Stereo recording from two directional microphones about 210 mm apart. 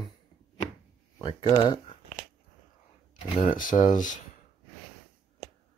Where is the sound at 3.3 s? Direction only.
35° left (ahead or behind).